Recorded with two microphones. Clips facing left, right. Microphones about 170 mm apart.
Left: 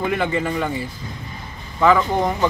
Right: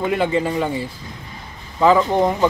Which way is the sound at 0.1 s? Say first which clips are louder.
Right 2 dB; 25° right (ahead or behind).